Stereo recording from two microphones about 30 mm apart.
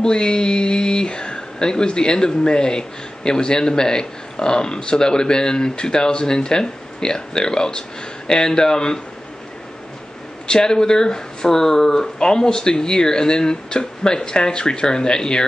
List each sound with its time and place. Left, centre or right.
0.0 s speech: left
10.4 s speech: left